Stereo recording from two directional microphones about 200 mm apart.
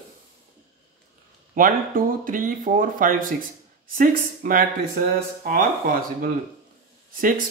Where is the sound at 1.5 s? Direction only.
45° right (ahead or behind).